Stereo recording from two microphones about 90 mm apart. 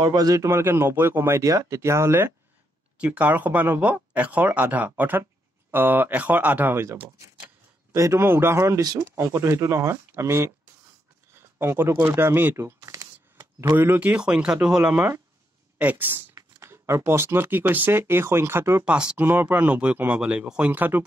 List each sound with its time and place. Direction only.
0.0 s speech: 45° right (ahead or behind); by 2.3 s 25° right (ahead or behind)
3.0 s speech: 15° right (ahead or behind); by 10.5 s 30° right (ahead or behind)
11.3 s a sound: 25° right (ahead or behind)
13.7 s speech: 20° right (ahead or behind)
16.3 s speech: 30° right (ahead or behind)
18.9 s speech: 10° right (ahead or behind)
19.1 s speech: 20° right (ahead or behind)